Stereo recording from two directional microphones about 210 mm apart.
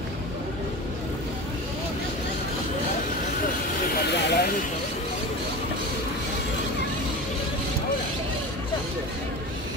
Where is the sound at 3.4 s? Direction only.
50° left (ahead or behind).